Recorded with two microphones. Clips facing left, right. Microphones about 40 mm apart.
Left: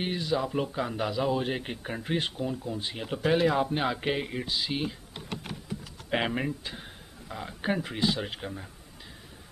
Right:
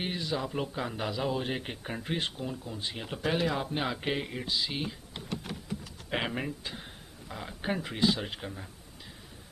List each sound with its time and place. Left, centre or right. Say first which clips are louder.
0.0 s a man's voice: left 4 dB; centre
6.1 s a man's voice: left 4 dB; centre